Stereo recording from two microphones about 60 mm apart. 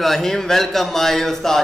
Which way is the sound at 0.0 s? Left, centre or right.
Centre.